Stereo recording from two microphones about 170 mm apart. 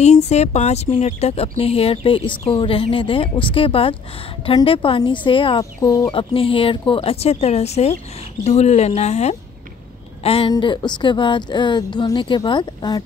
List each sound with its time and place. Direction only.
0.0 s speech: 40° left (ahead or behind)
5.8 s a woman's voice: 20° left (ahead or behind)
6.1 s a woman's voice: 30° left (ahead or behind)